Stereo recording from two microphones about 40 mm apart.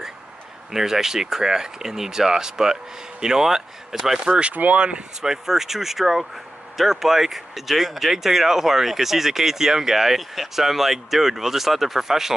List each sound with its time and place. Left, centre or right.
0.7 s speech: centre
4.3 s speech: right
5.2 s speech: centre